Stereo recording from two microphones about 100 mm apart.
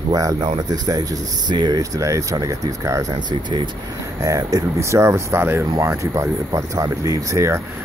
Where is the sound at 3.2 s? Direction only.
50° right (ahead or behind).